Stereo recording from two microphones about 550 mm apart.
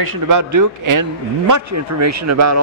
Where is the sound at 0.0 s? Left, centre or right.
Right.